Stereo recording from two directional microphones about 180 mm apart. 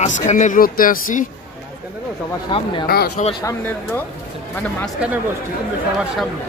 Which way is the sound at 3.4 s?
20° left (ahead or behind).